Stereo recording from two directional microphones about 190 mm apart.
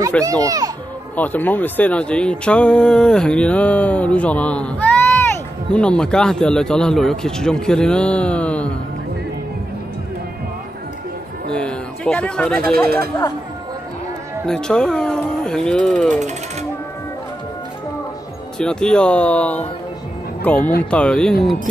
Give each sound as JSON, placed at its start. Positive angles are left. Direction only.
{"t": 0.2, "sound": "a child's voice", "side_deg": -20}
{"t": 1.1, "sound": "a man's voice", "side_deg": 10}
{"t": 11.5, "sound": "speech", "side_deg": 5}
{"t": 12.8, "sound": "speech", "side_deg": -55}
{"t": 14.4, "sound": "a man's voice", "side_deg": 5}
{"t": 18.6, "sound": "a man's voice", "side_deg": 5}